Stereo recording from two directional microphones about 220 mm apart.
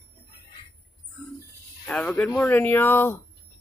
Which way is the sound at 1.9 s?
5° left (ahead or behind).